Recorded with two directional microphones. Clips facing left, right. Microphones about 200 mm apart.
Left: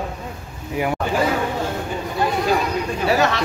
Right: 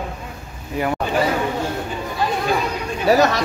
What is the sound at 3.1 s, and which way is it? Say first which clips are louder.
Speech: right 4 dB; 40° right (ahead or behind).